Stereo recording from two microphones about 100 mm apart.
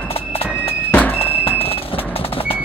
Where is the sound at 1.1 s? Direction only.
70° left (ahead or behind).